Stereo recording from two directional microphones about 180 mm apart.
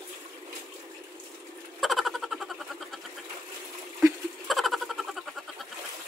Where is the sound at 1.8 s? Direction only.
Centre (ahead or behind).